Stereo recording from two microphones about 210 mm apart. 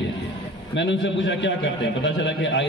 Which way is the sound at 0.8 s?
60° left (ahead or behind).